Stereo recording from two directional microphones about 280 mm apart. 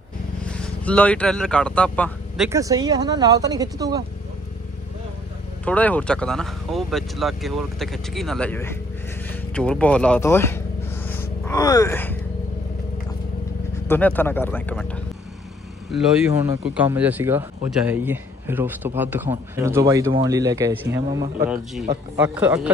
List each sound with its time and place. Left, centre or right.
0.4 s speech: centre
5.7 s speech: centre
11.1 s dog: centre
13.8 s speech: centre